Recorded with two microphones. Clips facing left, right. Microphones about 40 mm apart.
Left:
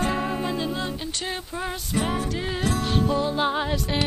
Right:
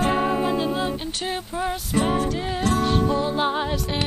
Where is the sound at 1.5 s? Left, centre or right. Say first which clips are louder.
Right 4 dB; centre.